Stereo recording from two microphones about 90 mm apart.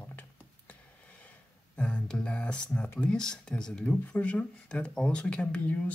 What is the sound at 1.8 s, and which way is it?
Speech, 10° left (ahead or behind).